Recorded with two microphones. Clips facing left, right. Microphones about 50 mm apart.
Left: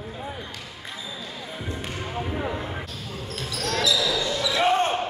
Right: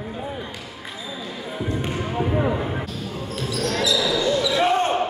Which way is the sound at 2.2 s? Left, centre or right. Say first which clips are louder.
Right 7 dB; centre.